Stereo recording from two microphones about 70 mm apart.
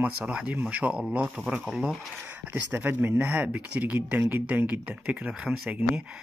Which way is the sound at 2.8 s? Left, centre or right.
Right.